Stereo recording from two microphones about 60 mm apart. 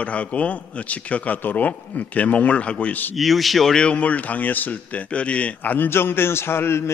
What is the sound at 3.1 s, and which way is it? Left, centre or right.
Speech, centre.